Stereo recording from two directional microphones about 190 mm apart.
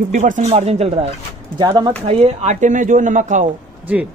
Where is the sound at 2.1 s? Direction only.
35° right (ahead or behind).